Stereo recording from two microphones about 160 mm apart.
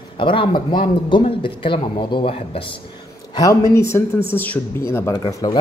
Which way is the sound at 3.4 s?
20° left (ahead or behind).